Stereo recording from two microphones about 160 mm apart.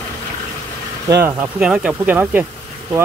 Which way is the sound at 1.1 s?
15° right (ahead or behind).